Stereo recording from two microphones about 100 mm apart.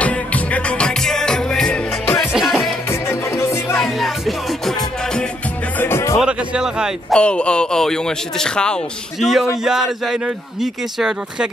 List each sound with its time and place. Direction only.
0.0 s music: 15° left (ahead or behind); by 2.7 s 5° right (ahead or behind)
2.9 s music: 25° left (ahead or behind)
3.7 s music: centre (ahead or behind)
5.8 s music: 25° left (ahead or behind)
6.1 s speech: 10° right (ahead or behind)
7.1 s a man's voice: 10° left (ahead or behind)